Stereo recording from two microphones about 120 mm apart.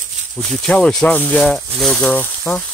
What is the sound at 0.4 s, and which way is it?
Speech, 5° left (ahead or behind).